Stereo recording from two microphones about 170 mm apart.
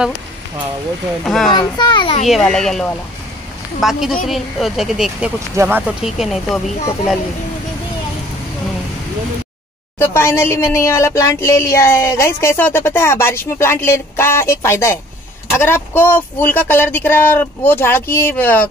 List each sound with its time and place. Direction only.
1.2 s speech: 5° left (ahead or behind)
1.5 s a child's voice: 25° left (ahead or behind)
2.2 s speech: centre (ahead or behind)
9.9 s a sound: 15° left (ahead or behind)